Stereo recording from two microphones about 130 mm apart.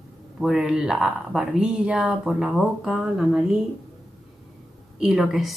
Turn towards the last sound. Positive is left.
turn(degrees=0)  # may be behind; listen again after turning